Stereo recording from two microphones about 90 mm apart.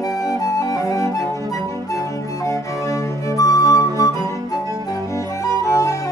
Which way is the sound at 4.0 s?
40° left (ahead or behind).